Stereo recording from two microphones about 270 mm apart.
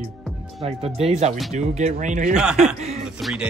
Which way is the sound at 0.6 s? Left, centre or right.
Right.